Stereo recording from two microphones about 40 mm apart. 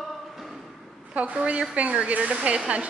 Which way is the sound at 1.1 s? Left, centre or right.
Right.